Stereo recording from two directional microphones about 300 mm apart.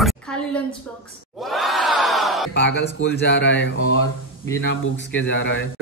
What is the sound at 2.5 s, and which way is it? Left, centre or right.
Speech, left.